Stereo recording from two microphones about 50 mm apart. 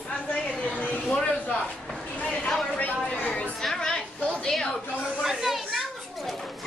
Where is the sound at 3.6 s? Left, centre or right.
Centre.